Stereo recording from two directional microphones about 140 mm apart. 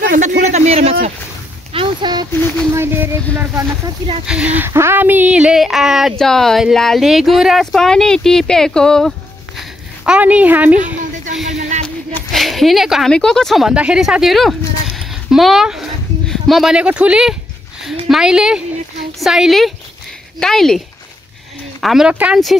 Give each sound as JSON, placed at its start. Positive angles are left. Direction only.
{"t": 0.1, "sound": "speech", "side_deg": -60}
{"t": 1.7, "sound": "a sound", "side_deg": -35}
{"t": 2.7, "sound": "speech", "side_deg": -15}
{"t": 9.6, "sound": "a sound", "side_deg": -5}
{"t": 11.8, "sound": "a woman's voice", "side_deg": 5}
{"t": 21.8, "sound": "speech", "side_deg": -5}